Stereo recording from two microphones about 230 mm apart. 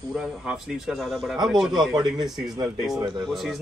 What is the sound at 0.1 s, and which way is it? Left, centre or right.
A man's voice, centre.